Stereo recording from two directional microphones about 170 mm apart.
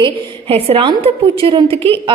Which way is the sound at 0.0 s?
35° right (ahead or behind).